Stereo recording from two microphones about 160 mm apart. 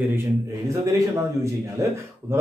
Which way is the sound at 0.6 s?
20° right (ahead or behind).